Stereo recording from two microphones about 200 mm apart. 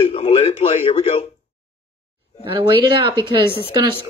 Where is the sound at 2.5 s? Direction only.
25° right (ahead or behind).